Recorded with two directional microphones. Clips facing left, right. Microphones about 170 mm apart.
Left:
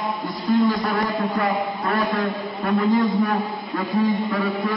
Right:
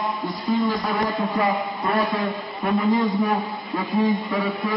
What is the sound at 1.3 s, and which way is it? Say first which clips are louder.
Speech: even; 20° right (ahead or behind).